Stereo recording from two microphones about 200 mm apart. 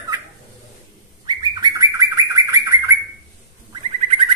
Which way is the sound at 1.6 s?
15° right (ahead or behind).